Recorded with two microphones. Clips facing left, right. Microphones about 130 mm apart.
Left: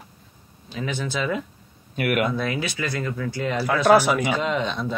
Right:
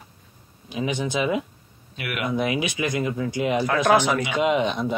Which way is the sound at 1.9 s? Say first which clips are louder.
Left 8 dB; 50° left (ahead or behind).